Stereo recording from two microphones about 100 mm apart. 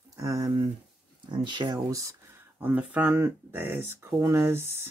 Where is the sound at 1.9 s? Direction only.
30° right (ahead or behind).